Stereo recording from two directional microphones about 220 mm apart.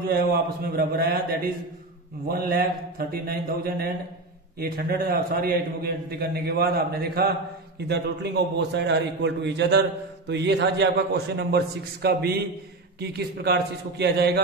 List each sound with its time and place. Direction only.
0.1 s a man's voice: 45° right (ahead or behind)